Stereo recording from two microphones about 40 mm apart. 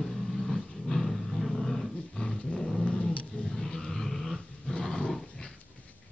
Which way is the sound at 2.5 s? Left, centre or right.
Centre.